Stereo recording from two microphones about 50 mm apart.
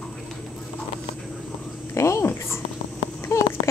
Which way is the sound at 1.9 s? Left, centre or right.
Left.